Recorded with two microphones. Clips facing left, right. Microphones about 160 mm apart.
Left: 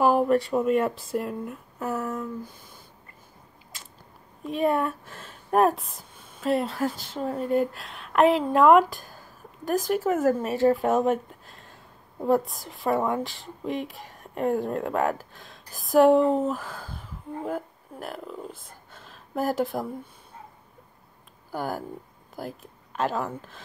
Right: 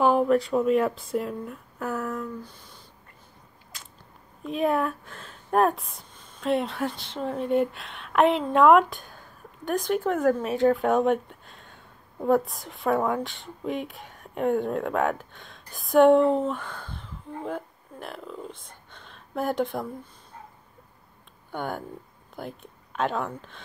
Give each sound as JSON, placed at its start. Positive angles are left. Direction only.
{"t": 0.0, "sound": "speech", "side_deg": 0}
{"t": 2.4, "sound": "speech", "side_deg": 50}
{"t": 4.5, "sound": "speech", "side_deg": 0}
{"t": 21.5, "sound": "speech", "side_deg": 5}